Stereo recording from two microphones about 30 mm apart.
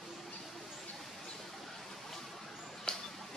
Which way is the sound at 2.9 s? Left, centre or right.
Left.